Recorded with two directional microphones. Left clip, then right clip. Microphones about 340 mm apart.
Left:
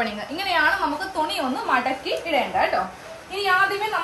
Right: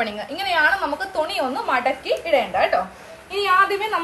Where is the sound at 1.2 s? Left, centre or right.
Right.